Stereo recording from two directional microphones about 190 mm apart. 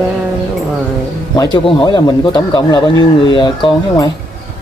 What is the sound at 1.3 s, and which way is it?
Speech, 20° left (ahead or behind).